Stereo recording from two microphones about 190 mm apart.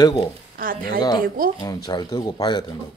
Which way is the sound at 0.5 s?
50° right (ahead or behind).